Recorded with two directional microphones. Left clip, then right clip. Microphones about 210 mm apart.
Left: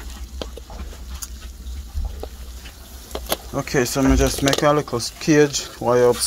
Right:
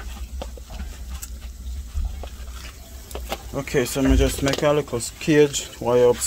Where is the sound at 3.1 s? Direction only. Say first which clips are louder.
Left 5 dB; 50° left (ahead or behind).